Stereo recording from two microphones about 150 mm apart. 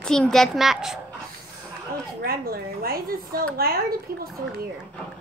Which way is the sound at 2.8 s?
85° right.